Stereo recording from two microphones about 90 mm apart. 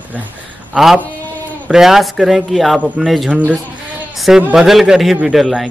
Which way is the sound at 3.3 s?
15° right (ahead or behind).